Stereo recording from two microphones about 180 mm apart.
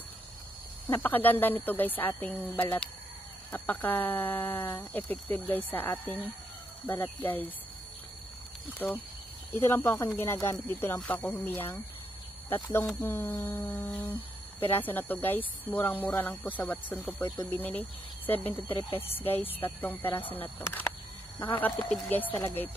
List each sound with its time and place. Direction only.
0.8 s speech: 10° left (ahead or behind)
8.7 s speech: 10° left (ahead or behind)